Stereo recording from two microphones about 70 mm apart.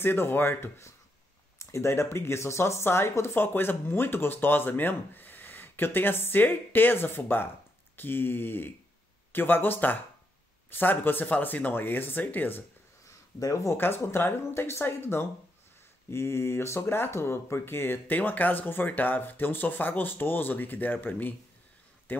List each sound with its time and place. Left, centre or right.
0.0 s speech: left
13.4 s speech: left
13.7 s speech: left